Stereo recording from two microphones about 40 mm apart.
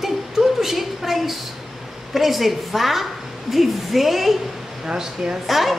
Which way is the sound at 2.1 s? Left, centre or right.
Centre.